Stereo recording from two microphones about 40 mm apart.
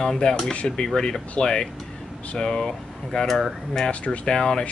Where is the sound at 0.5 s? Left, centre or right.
Left.